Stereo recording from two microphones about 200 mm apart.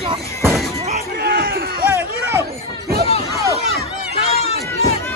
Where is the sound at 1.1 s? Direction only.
45° right (ahead or behind).